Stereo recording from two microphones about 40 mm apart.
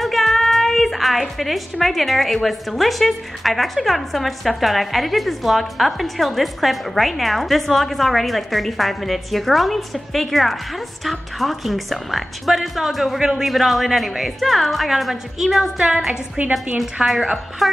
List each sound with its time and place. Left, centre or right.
0.0 s a woman's voice: centre
13.2 s a woman's voice: centre
13.5 s a woman's voice: centre
16.4 s a woman's voice: right
16.7 s a woman's voice: centre
17.6 s a sound: centre